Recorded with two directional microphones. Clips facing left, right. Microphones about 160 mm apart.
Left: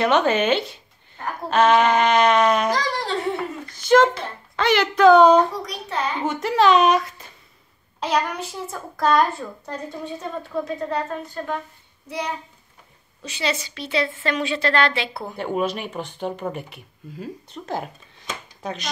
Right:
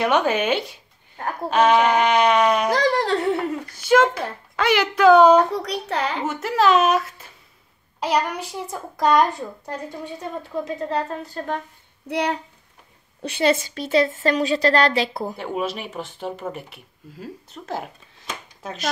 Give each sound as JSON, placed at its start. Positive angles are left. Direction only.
{"t": 0.0, "sound": "a woman's voice", "side_deg": -10}
{"t": 2.7, "sound": "dog", "side_deg": -60}
{"t": 3.6, "sound": "a child's voice", "side_deg": -10}
{"t": 5.5, "sound": "a child's voice", "side_deg": -70}
{"t": 6.2, "sound": "a child's voice", "side_deg": -5}
{"t": 12.1, "sound": "a child's voice", "side_deg": -65}
{"t": 13.2, "sound": "a woman's voice", "side_deg": -55}
{"t": 15.3, "sound": "speech", "side_deg": 0}